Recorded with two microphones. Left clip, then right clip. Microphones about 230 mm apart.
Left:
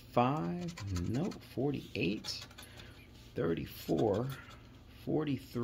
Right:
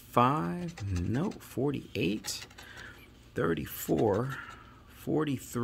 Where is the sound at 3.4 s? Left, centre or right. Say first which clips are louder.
Right 4 dB; right.